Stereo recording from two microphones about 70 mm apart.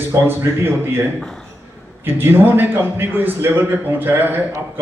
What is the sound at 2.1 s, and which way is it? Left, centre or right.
A man's voice, right.